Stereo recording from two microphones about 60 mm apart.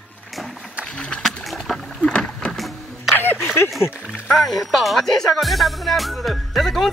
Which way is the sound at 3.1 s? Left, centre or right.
Left.